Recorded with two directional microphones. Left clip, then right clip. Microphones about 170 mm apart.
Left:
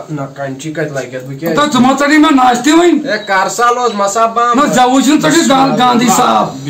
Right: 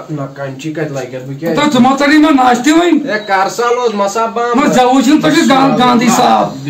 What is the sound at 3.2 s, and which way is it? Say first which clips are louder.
Speech: left 1 dB; 20° right (ahead or behind).